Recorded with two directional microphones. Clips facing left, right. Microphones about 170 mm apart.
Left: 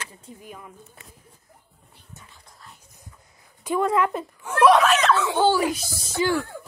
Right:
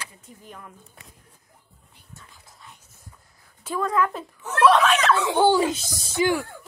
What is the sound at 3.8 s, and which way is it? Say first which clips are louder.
Speech: left 2 dB; 25° left (ahead or behind).